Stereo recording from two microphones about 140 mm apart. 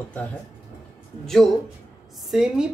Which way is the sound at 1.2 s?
5° left (ahead or behind).